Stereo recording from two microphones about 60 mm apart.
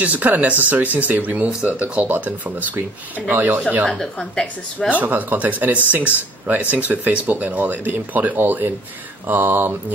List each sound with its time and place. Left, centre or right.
0.0 s speech: right
4.0 s a woman's voice: centre
4.8 s speech: right